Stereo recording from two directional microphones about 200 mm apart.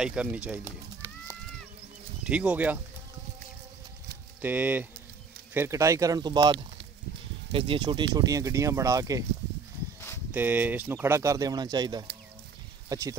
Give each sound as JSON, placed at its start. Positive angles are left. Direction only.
{"t": 0.0, "sound": "a sound", "side_deg": -5}
{"t": 2.2, "sound": "speech", "side_deg": -5}
{"t": 4.4, "sound": "speech", "side_deg": -10}
{"t": 10.3, "sound": "speech", "side_deg": -10}